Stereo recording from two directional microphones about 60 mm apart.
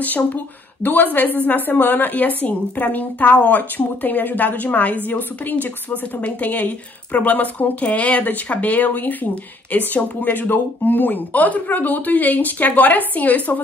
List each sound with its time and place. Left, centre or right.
0.0 s speech: left